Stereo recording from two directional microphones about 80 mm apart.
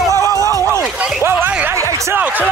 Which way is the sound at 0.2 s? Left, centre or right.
Left.